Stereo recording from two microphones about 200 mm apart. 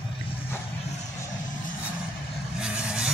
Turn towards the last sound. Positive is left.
turn(degrees=-5)  # may be behind; listen again after turning